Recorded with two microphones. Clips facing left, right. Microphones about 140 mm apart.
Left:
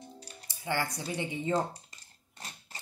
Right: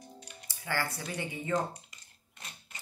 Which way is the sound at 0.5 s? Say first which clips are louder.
Left 2 dB; 20° left (ahead or behind).